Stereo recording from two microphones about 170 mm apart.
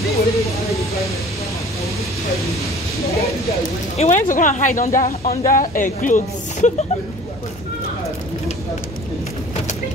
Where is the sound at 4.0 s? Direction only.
45° left (ahead or behind).